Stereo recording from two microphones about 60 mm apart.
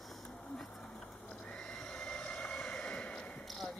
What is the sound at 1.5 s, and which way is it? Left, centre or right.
Neigh, centre.